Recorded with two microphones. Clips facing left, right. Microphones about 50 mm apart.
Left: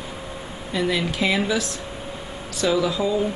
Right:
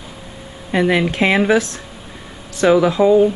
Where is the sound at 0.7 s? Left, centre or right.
Right.